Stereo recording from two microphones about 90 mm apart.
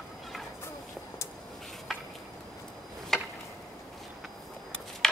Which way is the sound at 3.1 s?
5° left (ahead or behind).